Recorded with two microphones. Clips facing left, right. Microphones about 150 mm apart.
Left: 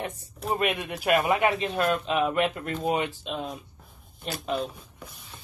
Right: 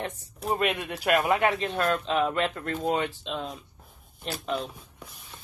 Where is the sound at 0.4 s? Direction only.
Centre (ahead or behind).